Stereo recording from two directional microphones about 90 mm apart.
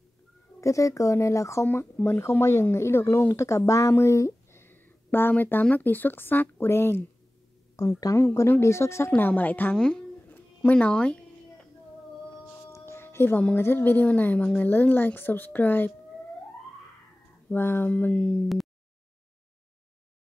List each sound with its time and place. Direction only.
0.6 s speech: 35° left (ahead or behind)
7.8 s speech: 40° left (ahead or behind)
8.2 s speech: 25° left (ahead or behind)
9.1 s speech: 20° left (ahead or behind)
9.8 s speech: 5° left (ahead or behind)
10.3 s a sound: 15° left (ahead or behind)
12.7 s music: 30° left (ahead or behind)
13.6 s speech: 25° left (ahead or behind)
17.5 s speech: 25° left (ahead or behind)